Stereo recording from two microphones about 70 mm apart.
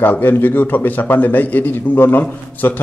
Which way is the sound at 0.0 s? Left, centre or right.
Left.